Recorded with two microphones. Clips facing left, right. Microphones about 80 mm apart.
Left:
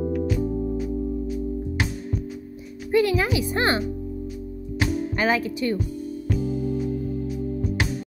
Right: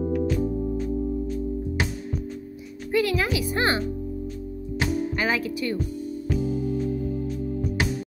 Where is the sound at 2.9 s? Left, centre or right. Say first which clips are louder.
Left 3 dB; left.